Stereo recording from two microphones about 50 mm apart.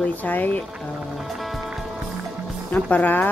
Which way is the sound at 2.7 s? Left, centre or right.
Left.